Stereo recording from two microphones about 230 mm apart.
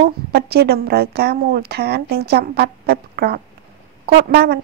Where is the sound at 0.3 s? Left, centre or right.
Right.